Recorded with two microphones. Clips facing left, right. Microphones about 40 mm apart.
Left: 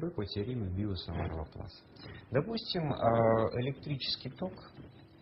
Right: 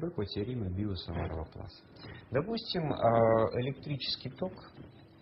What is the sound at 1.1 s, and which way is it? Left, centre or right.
Speech, right.